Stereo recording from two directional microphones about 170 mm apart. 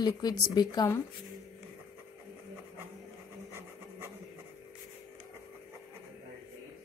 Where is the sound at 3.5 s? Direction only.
15° right (ahead or behind).